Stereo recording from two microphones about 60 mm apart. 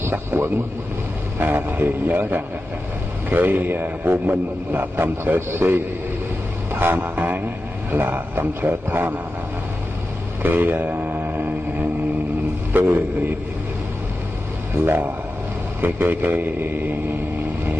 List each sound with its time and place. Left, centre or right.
0.0 s a man's voice: right
10.4 s a sound: right
12.7 s a man's voice: right
14.9 s a man's voice: right